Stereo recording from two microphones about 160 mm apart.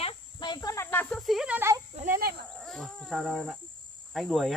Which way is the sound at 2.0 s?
65° right (ahead or behind).